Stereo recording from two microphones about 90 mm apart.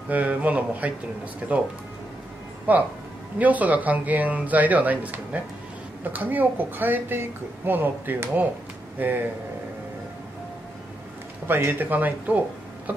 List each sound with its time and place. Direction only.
0.1 s speech: 20° right (ahead or behind)
2.7 s speech: 20° right (ahead or behind)
11.4 s speech: 25° right (ahead or behind)